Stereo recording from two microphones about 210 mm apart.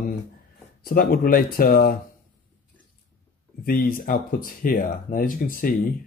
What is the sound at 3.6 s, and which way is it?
Speech, 45° left (ahead or behind).